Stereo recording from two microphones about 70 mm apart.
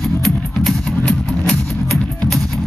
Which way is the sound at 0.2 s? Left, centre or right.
Centre.